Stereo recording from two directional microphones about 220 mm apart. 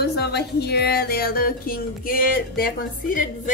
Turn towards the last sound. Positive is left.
turn(degrees=35)  # may be behind; listen again after turning